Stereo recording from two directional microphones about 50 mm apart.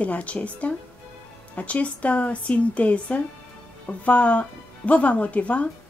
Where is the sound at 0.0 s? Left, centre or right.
Left.